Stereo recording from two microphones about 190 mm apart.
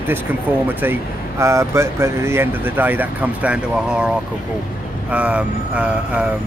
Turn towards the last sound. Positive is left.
turn(degrees=-5)  # may be behind; listen again after turning